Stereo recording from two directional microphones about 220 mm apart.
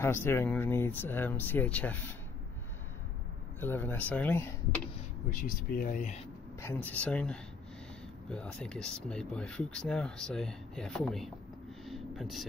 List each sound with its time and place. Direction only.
0.0 s speech: 10° left (ahead or behind)
3.6 s speech: 10° left (ahead or behind)
5.3 s speech: 40° left (ahead or behind)
6.6 s speech: 10° left (ahead or behind)
11.8 s a sound: centre (ahead or behind)